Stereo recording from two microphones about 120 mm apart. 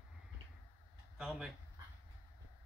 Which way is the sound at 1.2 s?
Centre (ahead or behind).